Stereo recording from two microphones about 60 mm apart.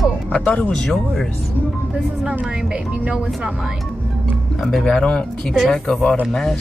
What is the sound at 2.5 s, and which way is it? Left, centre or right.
Speech, centre.